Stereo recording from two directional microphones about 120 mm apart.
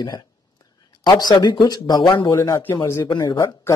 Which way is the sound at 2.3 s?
25° left (ahead or behind).